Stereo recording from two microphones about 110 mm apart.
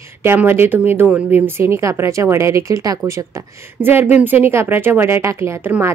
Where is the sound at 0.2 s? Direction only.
20° right (ahead or behind).